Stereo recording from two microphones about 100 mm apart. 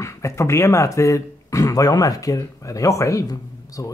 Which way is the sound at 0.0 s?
30° left (ahead or behind).